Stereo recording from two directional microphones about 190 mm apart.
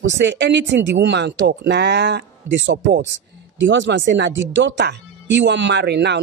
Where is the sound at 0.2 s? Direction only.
65° right (ahead or behind).